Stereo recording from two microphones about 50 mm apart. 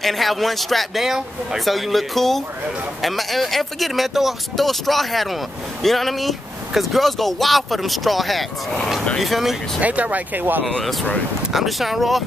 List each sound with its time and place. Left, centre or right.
0.0 s speech: centre
1.0 s speech: centre
1.6 s speech: centre
9.8 s speech: right
10.8 s speech: centre